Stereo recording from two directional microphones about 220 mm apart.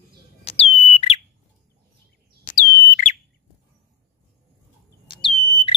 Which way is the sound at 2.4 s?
40° left (ahead or behind).